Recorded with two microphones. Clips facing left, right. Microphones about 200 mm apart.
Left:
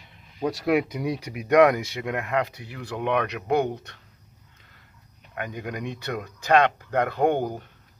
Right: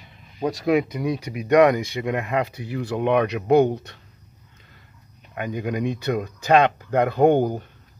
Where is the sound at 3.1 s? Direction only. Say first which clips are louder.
Right 5 dB; 15° right (ahead or behind).